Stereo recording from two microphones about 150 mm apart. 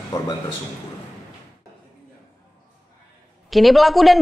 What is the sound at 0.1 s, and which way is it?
Speech, 25° left (ahead or behind).